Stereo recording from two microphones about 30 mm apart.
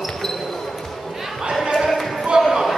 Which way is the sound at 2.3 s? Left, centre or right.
Right.